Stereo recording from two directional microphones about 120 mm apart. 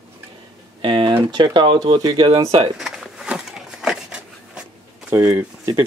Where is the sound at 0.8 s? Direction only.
40° right (ahead or behind).